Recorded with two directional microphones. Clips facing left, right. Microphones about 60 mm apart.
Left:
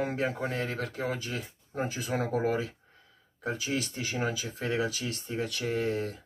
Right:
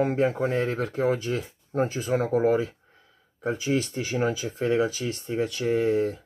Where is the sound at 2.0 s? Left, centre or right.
Centre.